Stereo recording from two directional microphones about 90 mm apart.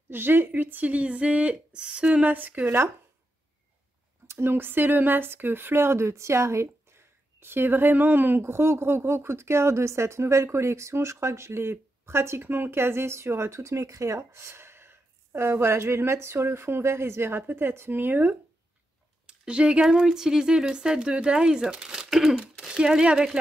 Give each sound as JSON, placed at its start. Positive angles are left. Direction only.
{"t": 0.1, "sound": "speech", "side_deg": -25}
{"t": 4.3, "sound": "speech", "side_deg": -25}
{"t": 19.2, "sound": "speech", "side_deg": -10}